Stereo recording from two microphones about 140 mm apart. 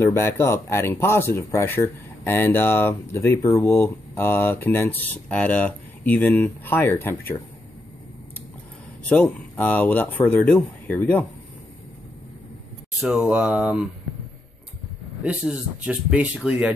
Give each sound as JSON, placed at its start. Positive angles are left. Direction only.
{"t": 0.0, "sound": "speech", "side_deg": 15}
{"t": 9.1, "sound": "speech", "side_deg": 10}
{"t": 13.0, "sound": "speech", "side_deg": -5}
{"t": 15.2, "sound": "speech", "side_deg": -10}